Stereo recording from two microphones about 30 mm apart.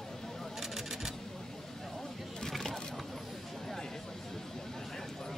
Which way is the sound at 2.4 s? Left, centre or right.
Centre.